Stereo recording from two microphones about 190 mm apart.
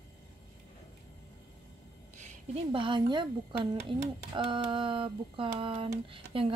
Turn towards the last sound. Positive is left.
turn(degrees=-30)  # may be behind; listen again after turning